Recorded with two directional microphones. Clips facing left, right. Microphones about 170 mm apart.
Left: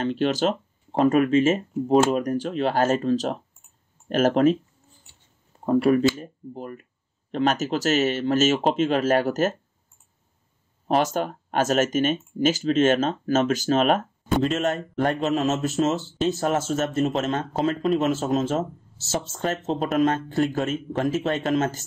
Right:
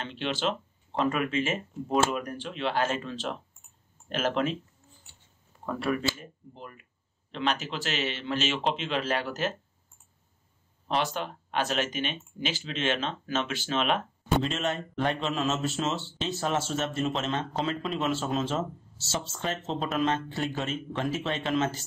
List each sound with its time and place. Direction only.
0.0 s speech: 40° left (ahead or behind)
5.7 s speech: 35° left (ahead or behind)
10.9 s speech: 45° left (ahead or behind)